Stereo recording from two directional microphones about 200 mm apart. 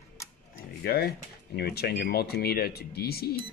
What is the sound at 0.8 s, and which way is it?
Speech, 50° left (ahead or behind).